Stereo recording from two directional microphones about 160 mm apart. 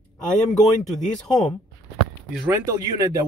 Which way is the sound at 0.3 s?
Centre (ahead or behind).